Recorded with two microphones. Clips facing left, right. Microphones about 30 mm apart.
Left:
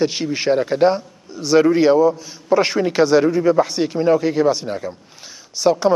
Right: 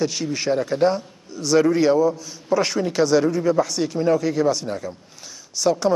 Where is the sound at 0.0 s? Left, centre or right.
Left.